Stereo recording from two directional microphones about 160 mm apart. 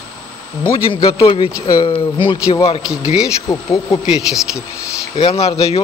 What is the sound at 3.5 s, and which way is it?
Speech, 25° left (ahead or behind).